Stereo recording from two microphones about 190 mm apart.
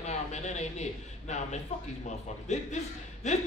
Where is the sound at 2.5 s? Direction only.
35° left (ahead or behind).